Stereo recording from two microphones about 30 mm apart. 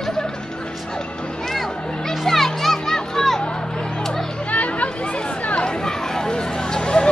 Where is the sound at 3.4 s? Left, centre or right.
Left.